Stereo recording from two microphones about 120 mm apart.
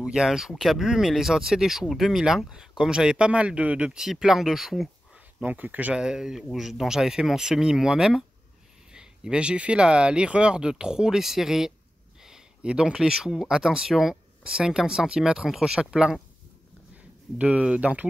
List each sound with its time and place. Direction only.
0.0 s speech: 5° right (ahead or behind)
5.4 s speech: 15° right (ahead or behind)
17.4 s speech: 10° right (ahead or behind)